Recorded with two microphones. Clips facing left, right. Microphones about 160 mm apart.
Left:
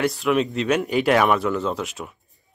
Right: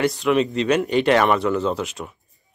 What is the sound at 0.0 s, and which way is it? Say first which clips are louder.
A man's voice: right 2 dB; centre (ahead or behind).